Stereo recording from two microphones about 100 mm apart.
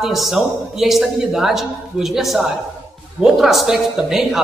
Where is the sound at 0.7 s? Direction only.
5° right (ahead or behind).